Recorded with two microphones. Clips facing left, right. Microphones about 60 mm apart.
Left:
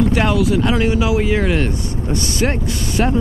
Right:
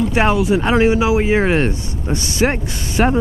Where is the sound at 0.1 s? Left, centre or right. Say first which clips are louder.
Right 1 dB; right.